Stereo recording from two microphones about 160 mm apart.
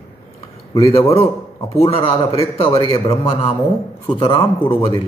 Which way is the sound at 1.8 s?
35° left (ahead or behind).